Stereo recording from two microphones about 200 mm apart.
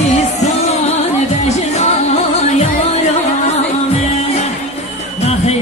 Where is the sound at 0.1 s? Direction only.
35° left (ahead or behind).